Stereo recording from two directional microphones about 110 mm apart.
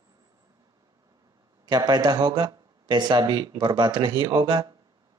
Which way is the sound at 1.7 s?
40° right (ahead or behind).